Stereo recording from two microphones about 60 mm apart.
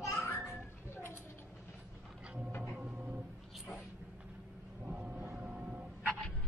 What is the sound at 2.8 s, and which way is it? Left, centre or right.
Vehicle, right.